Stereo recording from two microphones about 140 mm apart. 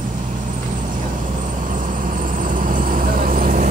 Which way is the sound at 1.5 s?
65° right (ahead or behind).